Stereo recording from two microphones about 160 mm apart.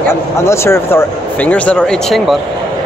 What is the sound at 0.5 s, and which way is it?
Speech, 15° left (ahead or behind).